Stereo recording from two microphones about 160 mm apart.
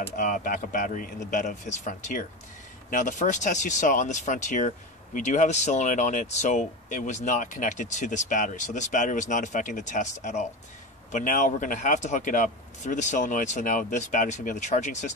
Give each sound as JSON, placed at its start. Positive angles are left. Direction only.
{"t": 0.1, "sound": "a man's voice", "side_deg": 60}